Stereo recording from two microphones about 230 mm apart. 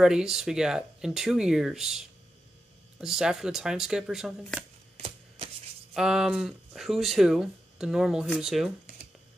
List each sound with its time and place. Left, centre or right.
0.0 s speech: centre
4.9 s a sound: right
5.9 s speech: centre